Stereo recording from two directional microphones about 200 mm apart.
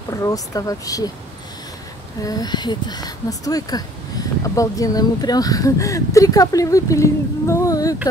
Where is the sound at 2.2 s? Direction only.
20° left (ahead or behind).